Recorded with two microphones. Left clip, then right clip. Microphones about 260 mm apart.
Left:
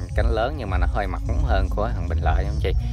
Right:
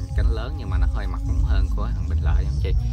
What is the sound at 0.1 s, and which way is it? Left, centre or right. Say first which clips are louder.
Speech: left 11 dB; centre.